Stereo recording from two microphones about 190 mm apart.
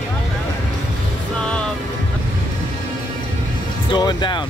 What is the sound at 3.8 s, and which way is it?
Speech, 25° left (ahead or behind).